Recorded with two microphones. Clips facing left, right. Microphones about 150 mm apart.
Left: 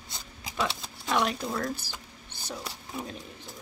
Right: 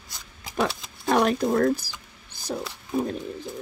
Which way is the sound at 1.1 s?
45° right (ahead or behind).